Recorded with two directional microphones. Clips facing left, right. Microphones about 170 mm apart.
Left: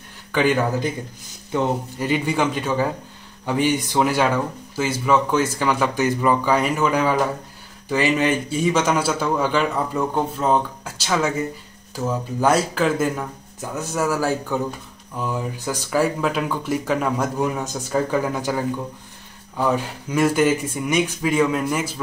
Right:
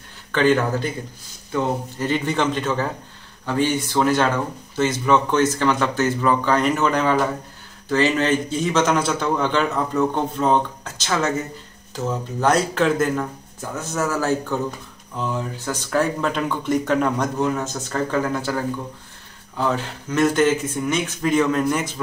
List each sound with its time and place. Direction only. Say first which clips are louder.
0.3 s a man's voice: right 1 dB; 10° left (ahead or behind)